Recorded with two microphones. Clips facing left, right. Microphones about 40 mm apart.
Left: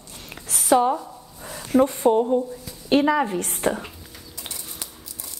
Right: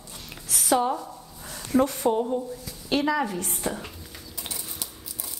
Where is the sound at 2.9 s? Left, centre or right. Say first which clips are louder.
Left 5 dB; left.